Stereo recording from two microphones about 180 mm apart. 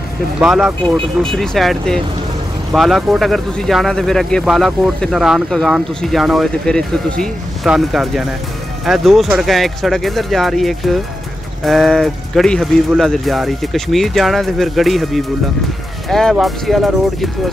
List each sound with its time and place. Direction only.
0.4 s speech: 5° right (ahead or behind)